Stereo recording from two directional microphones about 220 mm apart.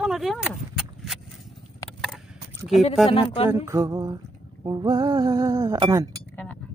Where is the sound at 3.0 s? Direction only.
25° left (ahead or behind).